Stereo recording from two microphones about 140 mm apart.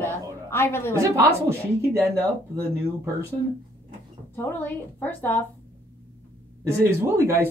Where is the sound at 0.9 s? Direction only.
25° right (ahead or behind).